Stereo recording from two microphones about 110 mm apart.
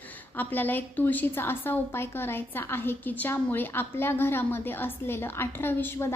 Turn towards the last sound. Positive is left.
turn(degrees=20)  # may be behind; listen again after turning